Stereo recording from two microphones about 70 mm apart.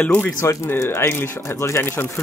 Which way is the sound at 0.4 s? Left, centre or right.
Left.